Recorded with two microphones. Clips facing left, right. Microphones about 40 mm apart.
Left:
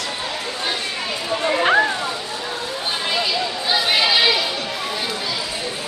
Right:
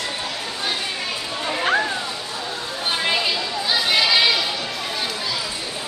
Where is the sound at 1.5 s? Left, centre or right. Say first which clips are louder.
Left 4 dB; left.